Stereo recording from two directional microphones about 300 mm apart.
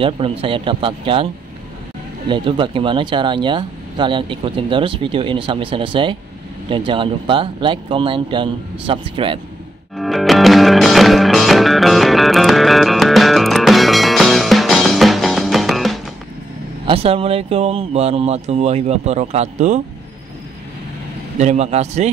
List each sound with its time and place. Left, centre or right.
0.0 s speech: centre
9.9 s music: centre
16.8 s speech: centre
21.4 s speech: right